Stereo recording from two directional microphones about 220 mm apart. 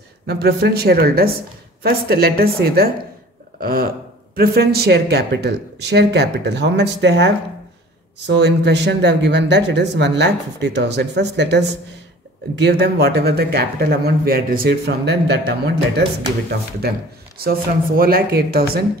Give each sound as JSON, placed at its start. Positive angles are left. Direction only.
{"t": 0.3, "sound": "speech", "side_deg": -45}
{"t": 16.8, "sound": "speech", "side_deg": -45}